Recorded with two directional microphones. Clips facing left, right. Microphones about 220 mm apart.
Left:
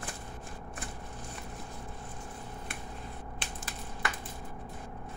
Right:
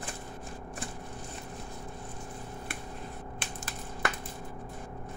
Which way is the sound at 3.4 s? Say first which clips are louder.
Right 2 dB; 50° right (ahead or behind).